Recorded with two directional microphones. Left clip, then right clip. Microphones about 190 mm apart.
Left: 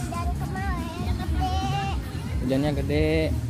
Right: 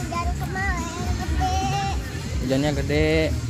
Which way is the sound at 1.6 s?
40° right (ahead or behind).